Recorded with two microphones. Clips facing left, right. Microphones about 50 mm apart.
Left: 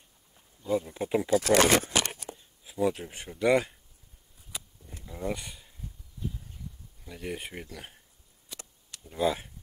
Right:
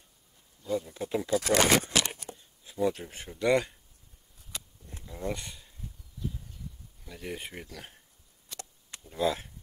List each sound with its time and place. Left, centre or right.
0.6 s speech: centre
1.5 s speech: centre
4.5 s a sound: centre
5.0 s speech: centre
7.1 s speech: centre
8.5 s a sound: centre
9.0 s speech: centre